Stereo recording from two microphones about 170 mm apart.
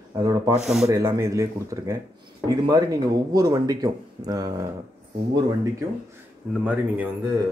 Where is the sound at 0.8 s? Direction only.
20° right (ahead or behind).